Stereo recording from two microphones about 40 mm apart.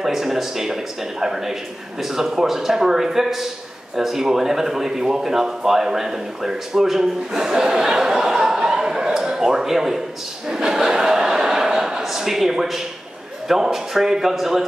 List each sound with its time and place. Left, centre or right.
0.0 s a man's voice: centre
10.5 s a sound: centre
12.0 s a man's voice: centre